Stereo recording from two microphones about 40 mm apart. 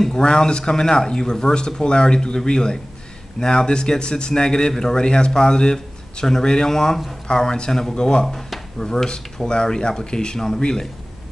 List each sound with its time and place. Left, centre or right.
0.2 s speech: left